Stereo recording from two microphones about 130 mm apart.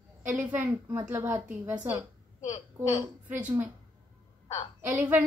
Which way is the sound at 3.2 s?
15° right (ahead or behind).